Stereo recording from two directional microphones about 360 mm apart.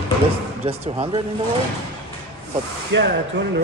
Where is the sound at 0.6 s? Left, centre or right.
Centre.